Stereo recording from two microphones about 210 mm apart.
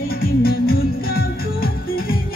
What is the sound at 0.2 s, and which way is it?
Music, 45° left (ahead or behind).